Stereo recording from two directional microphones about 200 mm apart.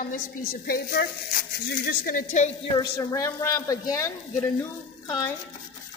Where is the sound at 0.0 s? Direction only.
45° left (ahead or behind).